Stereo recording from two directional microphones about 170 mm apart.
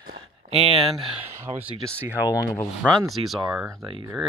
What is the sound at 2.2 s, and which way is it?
Speech, 20° left (ahead or behind).